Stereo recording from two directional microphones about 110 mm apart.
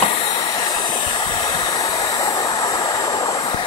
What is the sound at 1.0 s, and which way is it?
Hair dryer, 50° left (ahead or behind).